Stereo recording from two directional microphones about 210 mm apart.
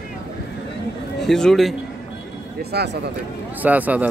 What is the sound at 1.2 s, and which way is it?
Speech, centre (ahead or behind).